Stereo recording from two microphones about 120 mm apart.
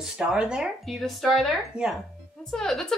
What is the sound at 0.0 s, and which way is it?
Speech, 5° right (ahead or behind).